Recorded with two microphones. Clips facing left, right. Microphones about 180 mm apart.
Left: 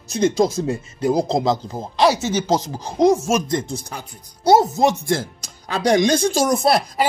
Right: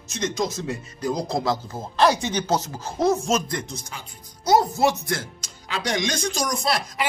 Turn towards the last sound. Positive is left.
turn(degrees=60)  # may be behind; listen again after turning